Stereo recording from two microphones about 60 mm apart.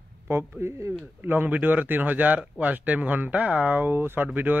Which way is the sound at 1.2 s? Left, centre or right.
Right.